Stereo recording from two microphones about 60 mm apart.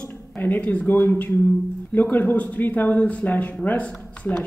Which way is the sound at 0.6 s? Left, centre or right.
Left.